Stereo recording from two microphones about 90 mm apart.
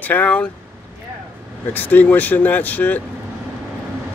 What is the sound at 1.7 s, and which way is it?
Speech, 20° left (ahead or behind).